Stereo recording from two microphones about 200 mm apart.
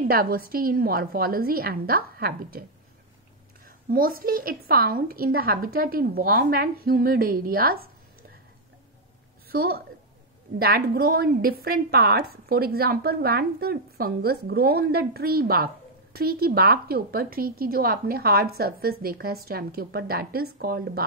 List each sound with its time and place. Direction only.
0.1 s a woman's voice: 45° right (ahead or behind)
3.6 s a woman's voice: 45° right (ahead or behind)
9.5 s a woman's voice: 50° right (ahead or behind)